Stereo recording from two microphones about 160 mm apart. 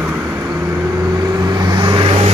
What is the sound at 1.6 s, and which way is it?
Vehicle, 30° right (ahead or behind).